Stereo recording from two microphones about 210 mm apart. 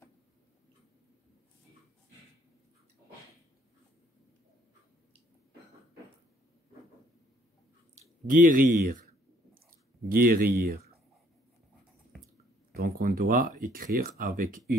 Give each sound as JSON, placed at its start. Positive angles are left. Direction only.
{"t": 8.3, "sound": "a sound", "side_deg": -40}
{"t": 10.0, "sound": "speech", "side_deg": -45}
{"t": 12.7, "sound": "speech", "side_deg": -45}